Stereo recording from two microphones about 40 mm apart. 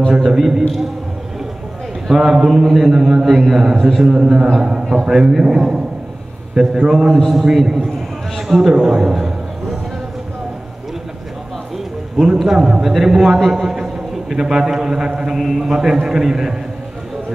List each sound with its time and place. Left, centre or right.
0.1 s a man's voice: centre
2.0 s a man's voice: centre
7.2 s a man's voice: centre
8.8 s a sound: centre
11.7 s a man's voice: centre